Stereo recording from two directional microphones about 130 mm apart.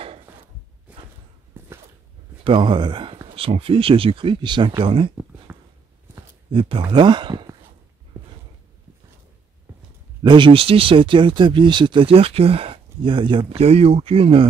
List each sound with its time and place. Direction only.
0.9 s walk: 10° right (ahead or behind)
1.6 s dog: 15° right (ahead or behind)
2.4 s speech: 40° right (ahead or behind)
5.5 s a sound: 20° right (ahead or behind)
6.5 s speech: 45° right (ahead or behind)
10.2 s speech: 40° right (ahead or behind)